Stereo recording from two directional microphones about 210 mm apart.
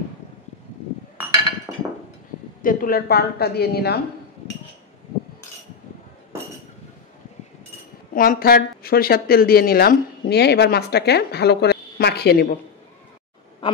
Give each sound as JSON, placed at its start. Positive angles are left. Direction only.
{"t": 2.6, "sound": "a woman's voice", "side_deg": 40}
{"t": 8.1, "sound": "a woman's voice", "side_deg": 45}